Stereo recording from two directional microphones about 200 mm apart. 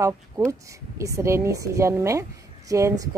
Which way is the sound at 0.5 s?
15° right (ahead or behind).